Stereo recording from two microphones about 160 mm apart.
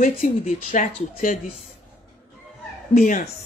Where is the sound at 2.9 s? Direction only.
55° left (ahead or behind).